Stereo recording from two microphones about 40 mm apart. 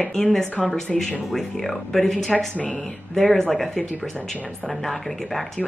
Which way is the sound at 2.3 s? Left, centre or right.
Left.